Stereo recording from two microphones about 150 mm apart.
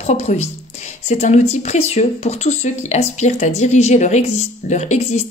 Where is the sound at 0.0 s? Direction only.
45° left (ahead or behind).